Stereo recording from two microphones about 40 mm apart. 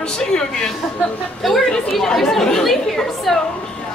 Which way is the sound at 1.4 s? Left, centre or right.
Centre.